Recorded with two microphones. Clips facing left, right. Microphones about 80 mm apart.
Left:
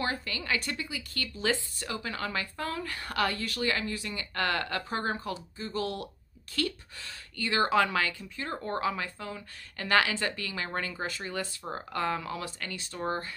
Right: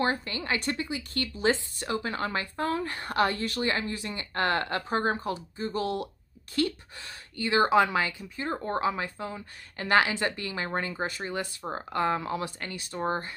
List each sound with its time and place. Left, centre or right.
0.0 s speech: right